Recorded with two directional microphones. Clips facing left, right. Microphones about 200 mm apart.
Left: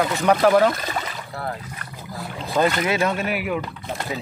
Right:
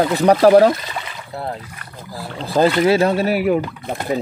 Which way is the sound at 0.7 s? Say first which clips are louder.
Left 2 dB; 45° left (ahead or behind).